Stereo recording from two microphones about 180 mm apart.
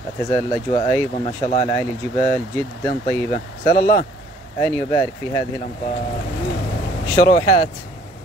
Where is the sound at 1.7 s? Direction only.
15° left (ahead or behind).